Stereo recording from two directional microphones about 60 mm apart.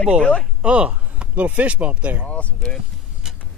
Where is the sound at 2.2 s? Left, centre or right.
Centre.